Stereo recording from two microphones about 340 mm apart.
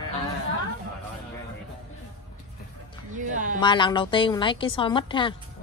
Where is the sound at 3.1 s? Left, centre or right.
Right.